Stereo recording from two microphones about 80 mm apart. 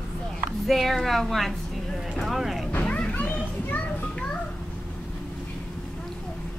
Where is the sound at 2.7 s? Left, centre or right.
Centre.